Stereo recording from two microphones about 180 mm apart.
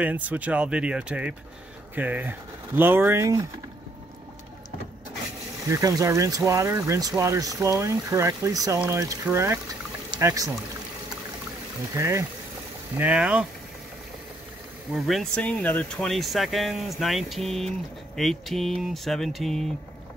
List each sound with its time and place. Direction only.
0.0 s speech: 10° right (ahead or behind)
5.7 s speech: 20° right (ahead or behind)
11.9 s speech: 15° right (ahead or behind)
14.9 s speech: centre (ahead or behind)